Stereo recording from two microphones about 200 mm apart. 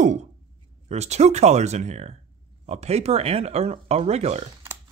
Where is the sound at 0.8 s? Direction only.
35° right (ahead or behind).